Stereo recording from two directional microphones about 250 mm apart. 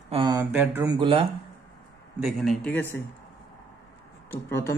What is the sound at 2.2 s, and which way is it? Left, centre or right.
Speech, centre.